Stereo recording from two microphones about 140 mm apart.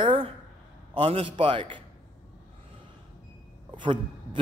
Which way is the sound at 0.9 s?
40° right (ahead or behind).